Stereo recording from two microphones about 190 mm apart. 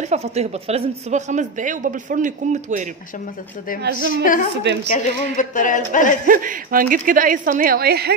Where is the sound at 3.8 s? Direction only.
60° right (ahead or behind).